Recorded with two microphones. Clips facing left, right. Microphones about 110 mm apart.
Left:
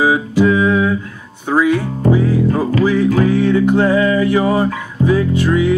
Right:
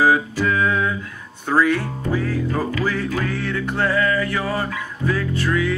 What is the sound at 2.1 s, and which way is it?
Music, 15° left (ahead or behind).